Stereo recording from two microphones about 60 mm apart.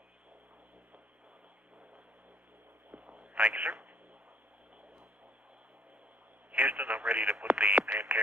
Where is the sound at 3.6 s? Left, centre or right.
Centre.